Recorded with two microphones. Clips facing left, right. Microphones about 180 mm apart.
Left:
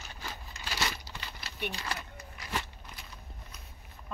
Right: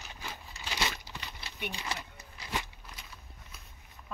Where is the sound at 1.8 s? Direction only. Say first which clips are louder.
Even; 20° right (ahead or behind).